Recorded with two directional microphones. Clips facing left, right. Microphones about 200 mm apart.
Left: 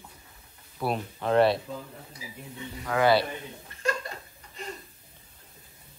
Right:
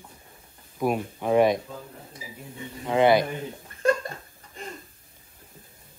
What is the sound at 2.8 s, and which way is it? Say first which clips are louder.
Speech: right 3 dB; 20° right (ahead or behind).